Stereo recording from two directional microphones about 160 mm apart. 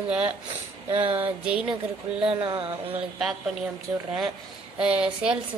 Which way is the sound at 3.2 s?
Centre (ahead or behind).